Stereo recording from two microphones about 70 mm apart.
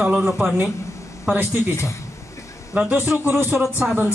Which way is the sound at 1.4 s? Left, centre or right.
Left.